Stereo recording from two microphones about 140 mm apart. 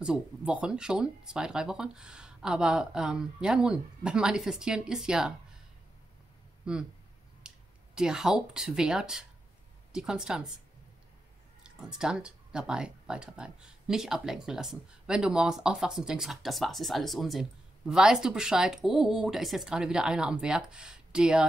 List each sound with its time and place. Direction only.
0.0 s speech: 5° right (ahead or behind)
6.6 s speech: 5° right (ahead or behind)
11.6 s speech: 5° right (ahead or behind)